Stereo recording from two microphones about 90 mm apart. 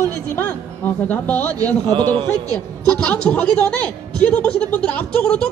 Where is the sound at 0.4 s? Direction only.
20° left (ahead or behind).